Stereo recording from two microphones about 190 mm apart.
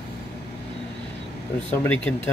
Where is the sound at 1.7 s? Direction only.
10° left (ahead or behind).